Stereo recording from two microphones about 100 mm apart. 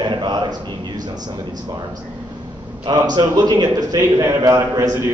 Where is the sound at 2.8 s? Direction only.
45° right (ahead or behind).